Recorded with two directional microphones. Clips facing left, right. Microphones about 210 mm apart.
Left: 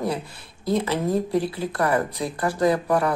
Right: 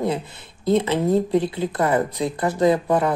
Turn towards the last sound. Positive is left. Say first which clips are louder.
# right 2 dB
turn(degrees=-20)  # may be behind; listen again after turning